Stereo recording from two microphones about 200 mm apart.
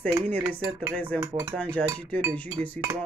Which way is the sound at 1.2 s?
15° right (ahead or behind).